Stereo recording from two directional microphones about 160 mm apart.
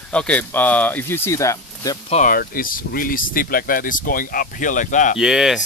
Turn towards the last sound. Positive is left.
turn(degrees=0)  # may be behind; listen again after turning